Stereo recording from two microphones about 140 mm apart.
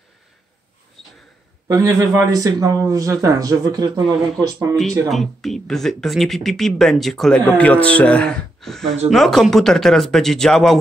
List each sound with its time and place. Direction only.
1.0 s a sound: centre (ahead or behind)
1.7 s a man's voice: 25° right (ahead or behind)
5.1 s speech: centre (ahead or behind)